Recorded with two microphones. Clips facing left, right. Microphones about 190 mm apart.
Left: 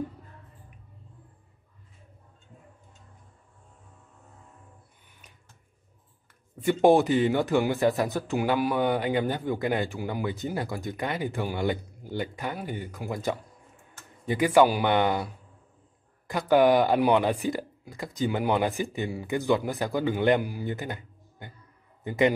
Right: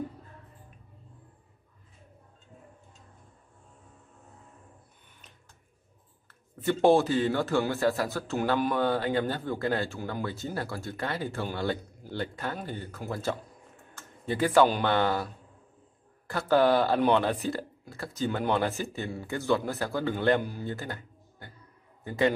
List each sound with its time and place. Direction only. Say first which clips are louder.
6.6 s a man's voice: left 2 dB; 15° left (ahead or behind)